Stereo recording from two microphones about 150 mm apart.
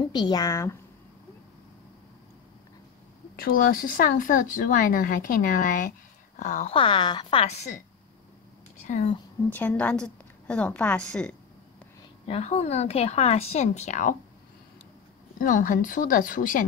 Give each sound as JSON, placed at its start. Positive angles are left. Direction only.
{"t": 0.1, "sound": "a woman's voice", "side_deg": 30}
{"t": 3.3, "sound": "speech", "side_deg": 70}
{"t": 6.7, "sound": "a woman's voice", "side_deg": 35}
{"t": 8.8, "sound": "speech", "side_deg": 45}
{"t": 9.5, "sound": "a woman's voice", "side_deg": 10}
{"t": 12.3, "sound": "speech", "side_deg": 45}
{"t": 15.3, "sound": "speech", "side_deg": 65}